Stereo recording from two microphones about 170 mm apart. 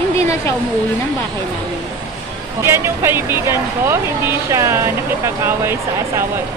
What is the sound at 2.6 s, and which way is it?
Speech, 15° right (ahead or behind).